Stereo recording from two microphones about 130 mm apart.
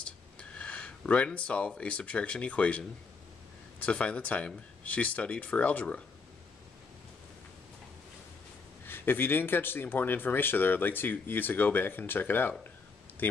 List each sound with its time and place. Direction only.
0.0 s speech: 10° left (ahead or behind)
3.8 s speech: 10° left (ahead or behind)
8.8 s speech: 15° left (ahead or behind)